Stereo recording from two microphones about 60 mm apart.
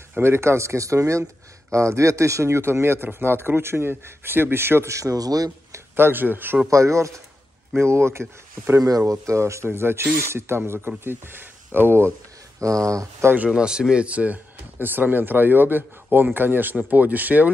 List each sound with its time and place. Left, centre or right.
0.2 s speech: right
4.9 s speech: right
5.9 s speech: right
6.7 s speech: right
7.7 s speech: right
8.8 s speech: right
12.5 s speech: right
13.2 s speech: right
13.6 s speech: centre; by 17.5 s right